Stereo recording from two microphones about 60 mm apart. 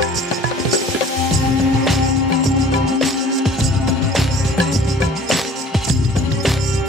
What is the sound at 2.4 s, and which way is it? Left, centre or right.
Music, centre.